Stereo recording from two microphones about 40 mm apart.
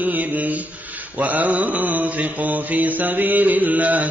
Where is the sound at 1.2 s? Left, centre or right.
Right.